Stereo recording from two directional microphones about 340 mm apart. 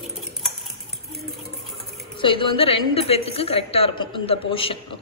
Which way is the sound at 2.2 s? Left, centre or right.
Centre.